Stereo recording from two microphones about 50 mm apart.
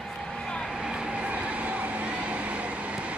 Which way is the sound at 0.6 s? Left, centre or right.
Centre.